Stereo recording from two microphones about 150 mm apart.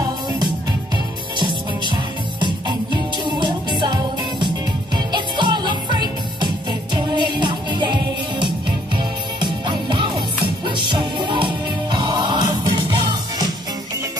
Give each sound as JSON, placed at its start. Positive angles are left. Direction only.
{"t": 2.4, "sound": "music", "side_deg": -30}